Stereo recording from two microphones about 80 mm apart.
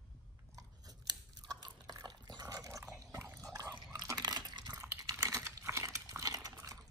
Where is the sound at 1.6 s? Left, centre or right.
Right.